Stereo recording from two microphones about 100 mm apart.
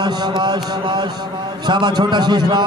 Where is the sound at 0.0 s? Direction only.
45° right (ahead or behind).